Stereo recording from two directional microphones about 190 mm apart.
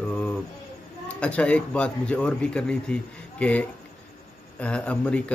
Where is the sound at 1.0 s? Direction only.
5° left (ahead or behind).